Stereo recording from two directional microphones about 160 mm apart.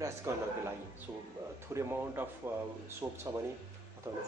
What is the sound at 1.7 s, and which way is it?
Speech, 15° right (ahead or behind).